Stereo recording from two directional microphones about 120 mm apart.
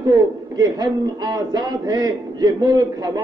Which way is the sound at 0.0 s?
30° right (ahead or behind).